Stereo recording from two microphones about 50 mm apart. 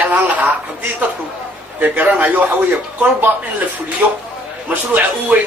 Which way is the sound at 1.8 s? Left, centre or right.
Right.